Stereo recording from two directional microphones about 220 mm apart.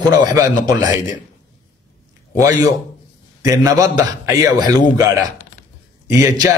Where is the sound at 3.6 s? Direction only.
15° right (ahead or behind).